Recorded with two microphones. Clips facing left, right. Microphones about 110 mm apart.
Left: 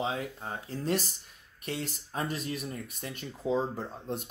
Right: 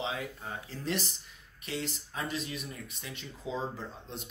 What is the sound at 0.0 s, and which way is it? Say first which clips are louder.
Speech: left 3 dB; 35° left (ahead or behind).